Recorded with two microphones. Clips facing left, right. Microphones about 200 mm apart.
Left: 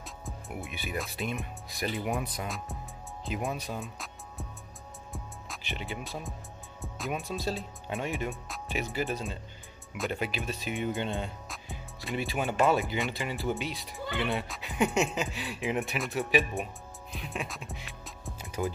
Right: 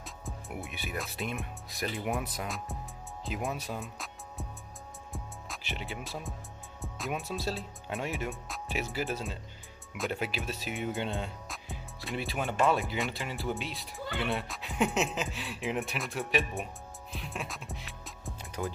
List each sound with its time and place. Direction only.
0.0 s speech: centre (ahead or behind)
5.1 s music: centre (ahead or behind)
6.8 s speech: centre (ahead or behind)
17.1 s music: centre (ahead or behind)